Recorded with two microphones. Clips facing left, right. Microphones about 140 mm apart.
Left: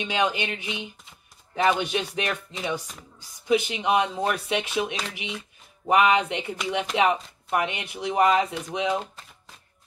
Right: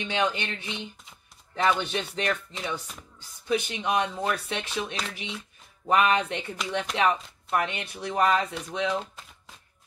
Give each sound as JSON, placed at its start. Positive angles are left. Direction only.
{"t": 0.0, "sound": "speech", "side_deg": 10}